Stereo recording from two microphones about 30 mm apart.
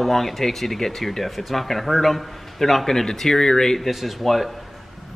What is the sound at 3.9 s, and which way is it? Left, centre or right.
Speech, centre.